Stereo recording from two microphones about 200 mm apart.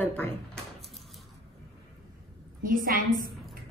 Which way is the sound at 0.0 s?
10° left (ahead or behind).